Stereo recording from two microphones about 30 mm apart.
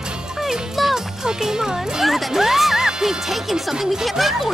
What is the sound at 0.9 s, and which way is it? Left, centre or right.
Music, centre.